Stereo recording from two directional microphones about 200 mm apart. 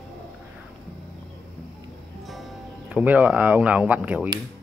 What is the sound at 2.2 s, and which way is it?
Speech, centre (ahead or behind).